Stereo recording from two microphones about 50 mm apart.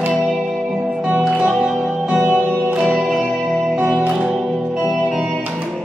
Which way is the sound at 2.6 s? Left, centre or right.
Right.